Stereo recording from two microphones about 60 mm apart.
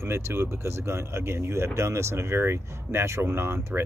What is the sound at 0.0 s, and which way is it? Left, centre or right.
Speech, right.